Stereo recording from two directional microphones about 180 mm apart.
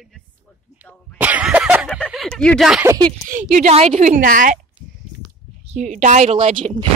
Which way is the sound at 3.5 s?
40° right (ahead or behind).